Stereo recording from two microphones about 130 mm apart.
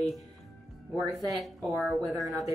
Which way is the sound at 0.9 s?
Centre (ahead or behind).